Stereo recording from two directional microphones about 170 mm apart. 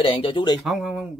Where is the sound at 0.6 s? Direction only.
Centre (ahead or behind).